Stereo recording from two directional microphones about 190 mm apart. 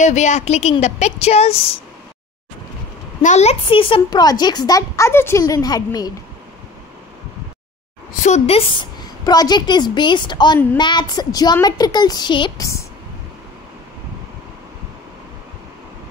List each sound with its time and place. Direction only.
0.0 s speech: 40° left (ahead or behind)
3.2 s a child's voice: 40° left (ahead or behind); by 6.1 s 20° left (ahead or behind)
8.2 s a child's voice: 35° left (ahead or behind); by 12.8 s 15° left (ahead or behind)